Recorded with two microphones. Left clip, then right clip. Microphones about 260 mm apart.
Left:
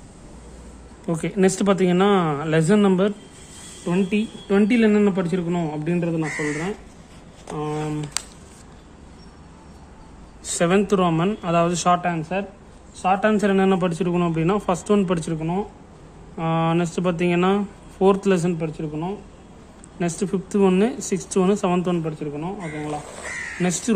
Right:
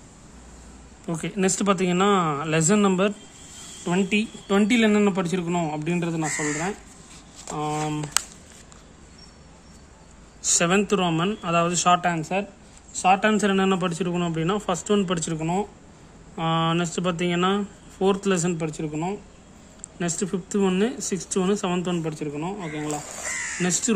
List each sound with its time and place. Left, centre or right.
1.0 s speech: centre
3.8 s speech: right
10.4 s speech: centre
12.0 s speech: centre
13.2 s speech: centre
15.3 s speech: right; by 18.6 s centre
18.6 s speech: centre
20.0 s speech: centre
22.0 s speech: centre
23.6 s speech: centre